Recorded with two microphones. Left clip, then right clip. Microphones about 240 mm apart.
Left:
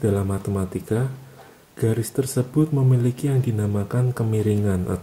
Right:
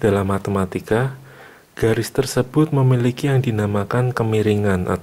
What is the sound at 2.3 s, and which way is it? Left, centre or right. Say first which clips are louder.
Speech: right 5 dB; centre.